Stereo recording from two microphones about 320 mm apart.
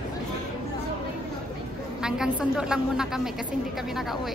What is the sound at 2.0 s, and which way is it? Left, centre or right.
Speech, centre.